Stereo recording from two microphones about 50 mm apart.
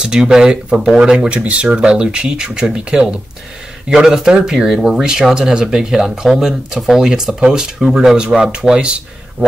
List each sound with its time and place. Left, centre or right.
0.0 s speech: centre
1.4 s speech: right